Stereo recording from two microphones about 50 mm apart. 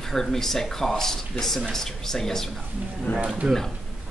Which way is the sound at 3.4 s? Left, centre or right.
Centre.